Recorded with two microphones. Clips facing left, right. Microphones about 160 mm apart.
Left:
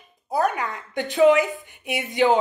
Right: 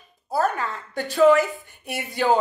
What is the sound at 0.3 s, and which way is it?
A woman's voice, 15° left (ahead or behind).